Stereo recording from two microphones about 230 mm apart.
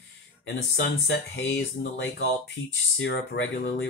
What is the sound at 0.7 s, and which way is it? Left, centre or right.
Speech, left.